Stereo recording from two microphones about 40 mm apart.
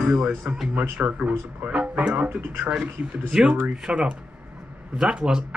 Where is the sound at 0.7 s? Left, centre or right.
Right.